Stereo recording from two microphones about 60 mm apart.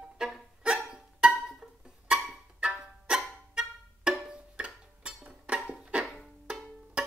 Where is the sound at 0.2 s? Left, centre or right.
Centre.